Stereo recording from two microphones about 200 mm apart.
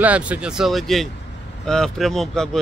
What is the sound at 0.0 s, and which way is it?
Speech, 5° right (ahead or behind).